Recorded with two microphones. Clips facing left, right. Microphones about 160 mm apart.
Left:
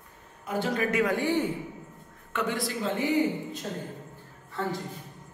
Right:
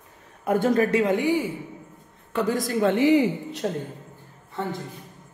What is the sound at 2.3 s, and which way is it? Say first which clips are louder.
Speech: right 6 dB; 40° right (ahead or behind).